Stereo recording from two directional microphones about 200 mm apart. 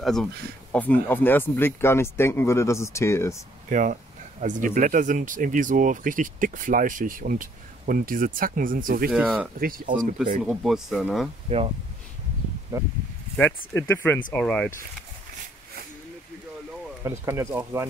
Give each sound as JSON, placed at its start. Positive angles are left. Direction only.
{"t": 0.0, "sound": "speech", "side_deg": 0}
{"t": 3.6, "sound": "speech", "side_deg": -40}
{"t": 9.1, "sound": "speech", "side_deg": -5}
{"t": 11.4, "sound": "speech", "side_deg": -30}
{"t": 12.7, "sound": "speech", "side_deg": -15}
{"t": 13.7, "sound": "speech", "side_deg": 10}
{"t": 17.0, "sound": "speech", "side_deg": -15}